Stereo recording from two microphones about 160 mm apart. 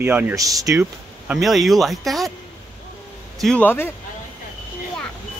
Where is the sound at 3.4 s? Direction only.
5° left (ahead or behind).